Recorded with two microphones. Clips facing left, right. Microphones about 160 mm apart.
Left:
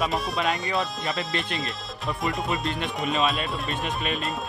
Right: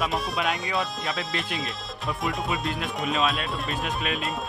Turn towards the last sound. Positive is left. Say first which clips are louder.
# even
turn(degrees=0)  # may be behind; listen again after turning